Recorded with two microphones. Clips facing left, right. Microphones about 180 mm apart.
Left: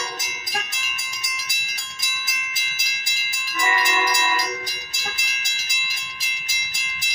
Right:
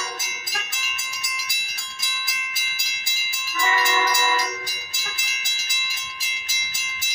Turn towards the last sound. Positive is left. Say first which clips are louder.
# left 1 dB
turn(degrees=15)  # may be behind; listen again after turning